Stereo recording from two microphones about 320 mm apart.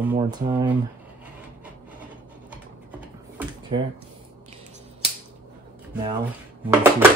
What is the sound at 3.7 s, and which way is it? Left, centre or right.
Speech, centre.